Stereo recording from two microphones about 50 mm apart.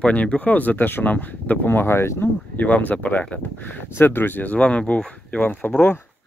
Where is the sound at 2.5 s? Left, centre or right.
Left.